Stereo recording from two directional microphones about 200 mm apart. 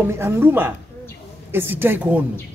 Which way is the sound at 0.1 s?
10° right (ahead or behind).